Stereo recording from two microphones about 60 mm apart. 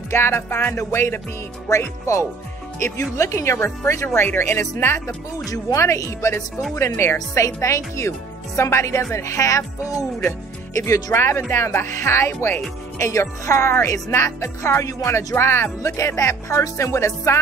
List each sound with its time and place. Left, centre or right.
0.1 s music: left
1.7 s speech: left
5.8 s speech: left
7.3 s speech: left
11.1 s music: left
11.5 s speech: left
15.8 s speech: left